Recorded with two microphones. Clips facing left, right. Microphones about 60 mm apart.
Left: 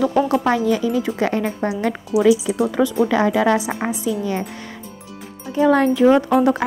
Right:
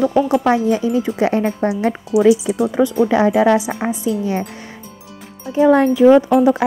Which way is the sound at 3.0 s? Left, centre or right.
Centre.